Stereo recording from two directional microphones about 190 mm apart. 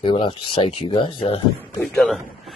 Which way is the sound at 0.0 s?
25° left (ahead or behind).